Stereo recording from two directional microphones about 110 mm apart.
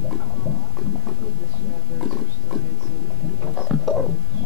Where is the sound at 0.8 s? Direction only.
Centre (ahead or behind).